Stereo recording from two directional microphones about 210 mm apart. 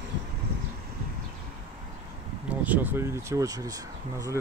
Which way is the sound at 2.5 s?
5° right (ahead or behind).